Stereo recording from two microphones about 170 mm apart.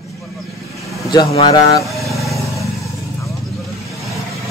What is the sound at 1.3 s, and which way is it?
Speech, 25° left (ahead or behind).